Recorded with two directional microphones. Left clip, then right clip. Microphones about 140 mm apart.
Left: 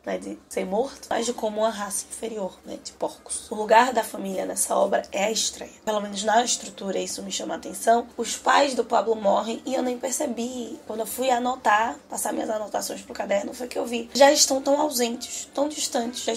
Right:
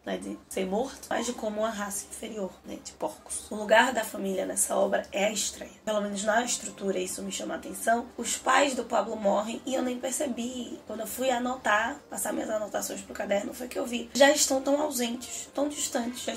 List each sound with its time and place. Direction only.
0.0 s speech: 10° left (ahead or behind)
1.0 s speech: 25° left (ahead or behind)
3.6 s speech: 35° left (ahead or behind)